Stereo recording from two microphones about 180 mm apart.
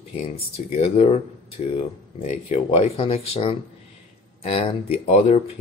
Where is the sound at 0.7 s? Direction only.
35° left (ahead or behind).